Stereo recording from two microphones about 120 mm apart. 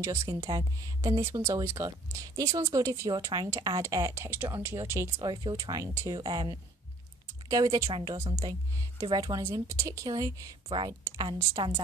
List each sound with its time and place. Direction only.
0.0 s speech: 25° right (ahead or behind)
3.4 s speech: 20° right (ahead or behind)
4.1 s speech: 15° right (ahead or behind)
5.2 s speech: 40° right (ahead or behind)
11.6 s speech: 40° right (ahead or behind)